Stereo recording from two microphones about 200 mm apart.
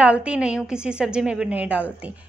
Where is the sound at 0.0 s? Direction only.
5° right (ahead or behind).